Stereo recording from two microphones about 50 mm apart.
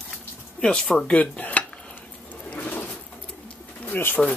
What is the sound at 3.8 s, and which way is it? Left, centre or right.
Speech, left.